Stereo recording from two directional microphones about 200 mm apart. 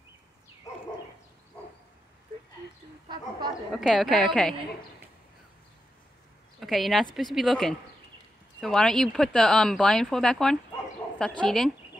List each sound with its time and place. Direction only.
3.1 s speech: 20° right (ahead or behind)
3.7 s speech: centre (ahead or behind)
6.6 s speech: centre (ahead or behind)